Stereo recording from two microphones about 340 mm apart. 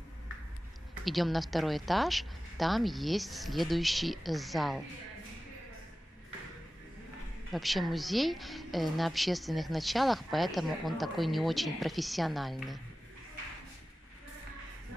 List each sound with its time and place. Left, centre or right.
1.0 s a woman's voice: centre
7.5 s a woman's voice: centre